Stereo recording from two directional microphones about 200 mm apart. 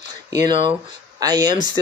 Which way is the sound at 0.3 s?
20° right (ahead or behind).